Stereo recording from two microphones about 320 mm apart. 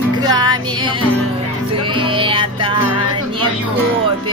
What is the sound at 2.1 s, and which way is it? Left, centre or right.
Music, centre.